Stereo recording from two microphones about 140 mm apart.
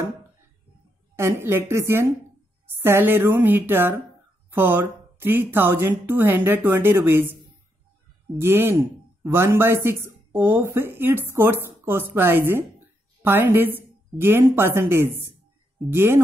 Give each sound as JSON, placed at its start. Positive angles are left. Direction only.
{"t": 1.1, "sound": "a man's voice", "side_deg": -15}
{"t": 8.4, "sound": "a man's voice", "side_deg": -15}